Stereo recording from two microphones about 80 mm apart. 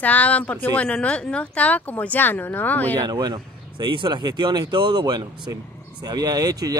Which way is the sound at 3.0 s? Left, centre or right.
Right.